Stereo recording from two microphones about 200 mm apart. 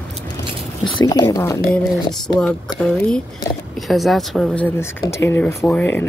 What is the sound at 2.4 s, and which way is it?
Speech, 5° left (ahead or behind).